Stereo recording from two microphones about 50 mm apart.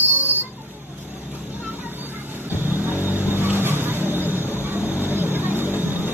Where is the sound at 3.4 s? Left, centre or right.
Right.